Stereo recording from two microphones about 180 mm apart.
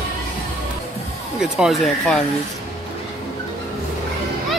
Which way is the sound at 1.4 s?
Centre (ahead or behind).